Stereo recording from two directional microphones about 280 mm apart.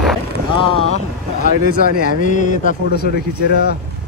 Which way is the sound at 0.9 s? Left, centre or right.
Left.